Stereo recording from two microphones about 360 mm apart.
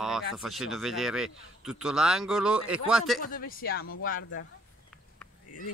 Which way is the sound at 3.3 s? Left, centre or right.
Left.